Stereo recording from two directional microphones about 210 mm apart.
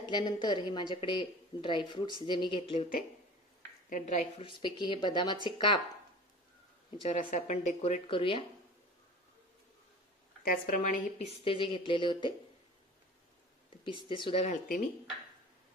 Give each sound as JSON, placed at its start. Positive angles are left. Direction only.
{"t": 0.1, "sound": "a woman's voice", "side_deg": 20}
{"t": 3.9, "sound": "a woman's voice", "side_deg": 35}
{"t": 7.0, "sound": "speech", "side_deg": 35}
{"t": 10.4, "sound": "a woman's voice", "side_deg": 40}
{"t": 13.8, "sound": "a woman's voice", "side_deg": 25}